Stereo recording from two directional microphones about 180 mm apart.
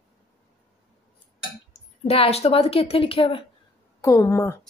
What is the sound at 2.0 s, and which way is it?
A woman's voice, 35° left (ahead or behind).